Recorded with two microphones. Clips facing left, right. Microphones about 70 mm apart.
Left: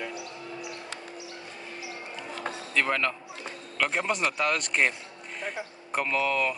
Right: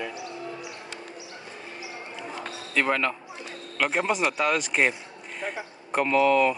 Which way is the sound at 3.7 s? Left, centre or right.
Centre.